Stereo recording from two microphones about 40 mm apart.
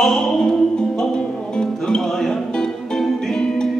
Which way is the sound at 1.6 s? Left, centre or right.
Centre.